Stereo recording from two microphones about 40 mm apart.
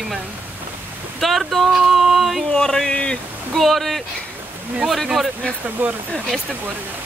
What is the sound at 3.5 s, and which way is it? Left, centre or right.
Speech, centre.